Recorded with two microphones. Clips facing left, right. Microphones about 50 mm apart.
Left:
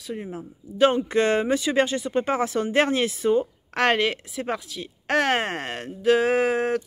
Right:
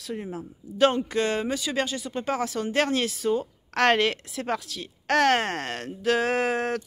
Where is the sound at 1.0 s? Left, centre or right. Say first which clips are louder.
Left 5 dB; left.